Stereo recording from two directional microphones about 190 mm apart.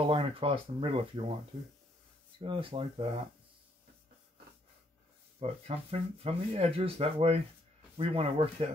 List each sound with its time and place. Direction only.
0.0 s speech: 30° right (ahead or behind)
2.4 s speech: 30° right (ahead or behind)
5.4 s speech: 30° right (ahead or behind)